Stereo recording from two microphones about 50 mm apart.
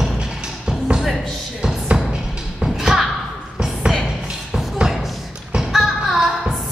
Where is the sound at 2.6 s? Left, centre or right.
Centre.